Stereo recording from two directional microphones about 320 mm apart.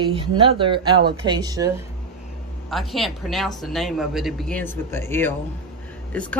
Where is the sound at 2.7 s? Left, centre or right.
Centre.